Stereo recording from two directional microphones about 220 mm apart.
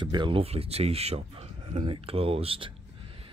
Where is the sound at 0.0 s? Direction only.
20° right (ahead or behind).